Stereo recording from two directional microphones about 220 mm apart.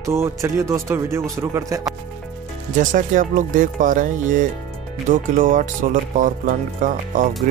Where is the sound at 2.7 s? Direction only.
35° right (ahead or behind).